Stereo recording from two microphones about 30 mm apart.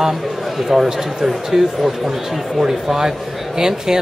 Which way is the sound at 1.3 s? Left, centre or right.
Centre.